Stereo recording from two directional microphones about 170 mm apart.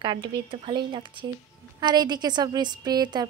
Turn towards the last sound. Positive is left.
turn(degrees=-25)  # may be behind; listen again after turning